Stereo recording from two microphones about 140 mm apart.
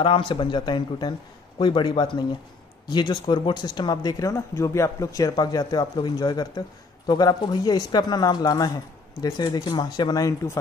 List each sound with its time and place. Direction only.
0.0 s speech: 40° left (ahead or behind); by 10.6 s 25° left (ahead or behind)